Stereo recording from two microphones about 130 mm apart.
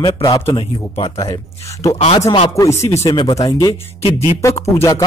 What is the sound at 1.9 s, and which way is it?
Speech, 55° left (ahead or behind).